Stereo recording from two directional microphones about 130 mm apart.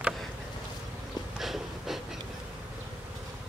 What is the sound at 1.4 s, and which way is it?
Snort, centre (ahead or behind).